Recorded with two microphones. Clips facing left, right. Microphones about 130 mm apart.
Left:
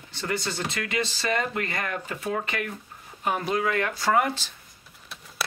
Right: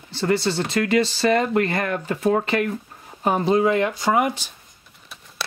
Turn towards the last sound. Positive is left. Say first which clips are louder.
# even
turn(degrees=0)  # may be behind; listen again after turning